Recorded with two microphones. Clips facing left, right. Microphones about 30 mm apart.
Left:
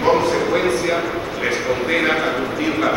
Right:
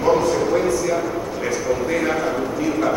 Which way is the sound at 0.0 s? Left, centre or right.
Left.